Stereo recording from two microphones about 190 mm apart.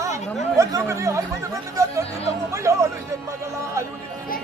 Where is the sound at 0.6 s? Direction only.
15° right (ahead or behind).